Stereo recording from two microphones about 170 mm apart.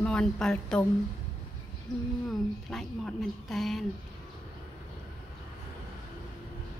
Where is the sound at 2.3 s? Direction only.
Centre (ahead or behind).